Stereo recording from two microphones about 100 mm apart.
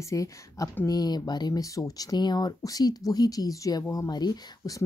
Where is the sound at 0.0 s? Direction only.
35° left (ahead or behind).